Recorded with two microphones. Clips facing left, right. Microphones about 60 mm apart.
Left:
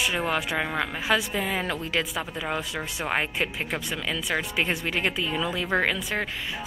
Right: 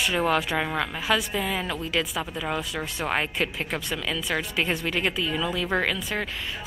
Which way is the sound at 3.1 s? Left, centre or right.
Centre.